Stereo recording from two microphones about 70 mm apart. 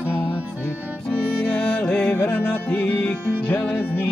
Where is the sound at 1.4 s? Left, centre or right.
Left.